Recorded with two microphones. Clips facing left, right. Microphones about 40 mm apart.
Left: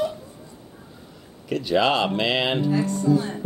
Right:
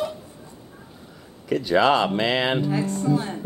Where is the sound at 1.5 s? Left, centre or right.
Centre.